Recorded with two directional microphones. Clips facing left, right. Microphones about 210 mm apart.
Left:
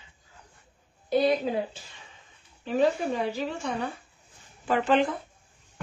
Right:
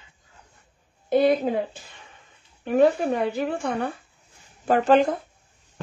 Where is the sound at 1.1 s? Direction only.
50° right (ahead or behind).